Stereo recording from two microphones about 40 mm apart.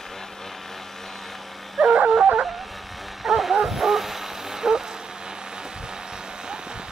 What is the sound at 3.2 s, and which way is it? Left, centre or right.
Dog, centre.